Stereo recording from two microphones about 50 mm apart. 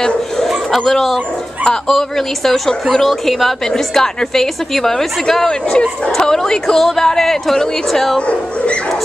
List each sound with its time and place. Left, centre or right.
0.0 s bow-wow: centre
0.7 s a woman's voice: centre